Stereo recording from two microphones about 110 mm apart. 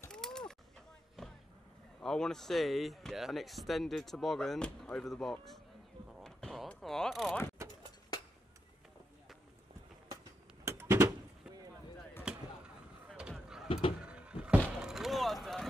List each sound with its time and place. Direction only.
0.1 s mechanisms: 5° left (ahead or behind)
2.0 s speech: 5° left (ahead or behind)
6.2 s a sound: centre (ahead or behind)
6.7 s speech: 5° left (ahead or behind)
7.6 s vehicle: 25° right (ahead or behind)
10.6 s door: 25° right (ahead or behind)
12.3 s basketball bounce: 10° right (ahead or behind)
13.7 s a sound: 55° left (ahead or behind)
14.0 s a sound: 10° right (ahead or behind)